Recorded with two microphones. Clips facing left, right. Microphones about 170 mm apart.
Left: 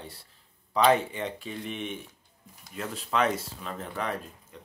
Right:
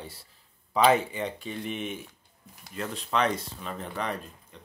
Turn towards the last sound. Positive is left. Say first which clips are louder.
# left 1 dB
turn(degrees=5)  # may be behind; listen again after turning